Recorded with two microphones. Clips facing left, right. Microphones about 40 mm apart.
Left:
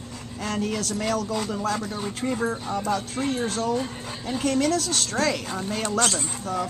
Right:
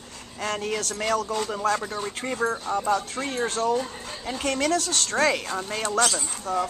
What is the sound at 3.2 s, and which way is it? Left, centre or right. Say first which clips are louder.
Speech: left 3 dB; centre.